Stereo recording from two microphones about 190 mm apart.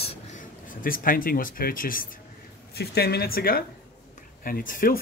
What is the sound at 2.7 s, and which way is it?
Speech, 60° left (ahead or behind).